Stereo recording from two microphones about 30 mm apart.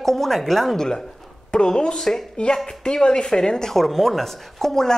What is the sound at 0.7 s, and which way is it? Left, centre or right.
A woman's voice, left.